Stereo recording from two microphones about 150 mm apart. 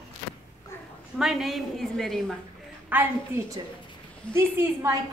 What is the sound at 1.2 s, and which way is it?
Speech, centre (ahead or behind).